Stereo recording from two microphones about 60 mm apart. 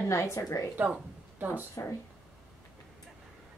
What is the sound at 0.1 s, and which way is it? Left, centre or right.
Speech, left.